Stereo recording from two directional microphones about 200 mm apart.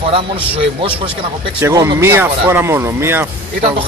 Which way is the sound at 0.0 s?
25° right (ahead or behind).